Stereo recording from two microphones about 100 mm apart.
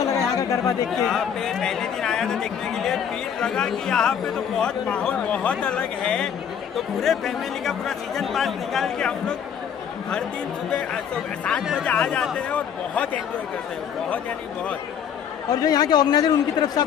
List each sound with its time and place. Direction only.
0.0 s chatter: 35° left (ahead or behind)
0.9 s speech: 5° left (ahead or behind)
11.8 s speech: 10° left (ahead or behind)
15.5 s a man's voice: 45° left (ahead or behind)